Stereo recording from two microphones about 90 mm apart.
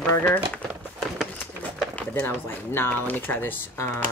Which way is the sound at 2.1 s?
25° left (ahead or behind).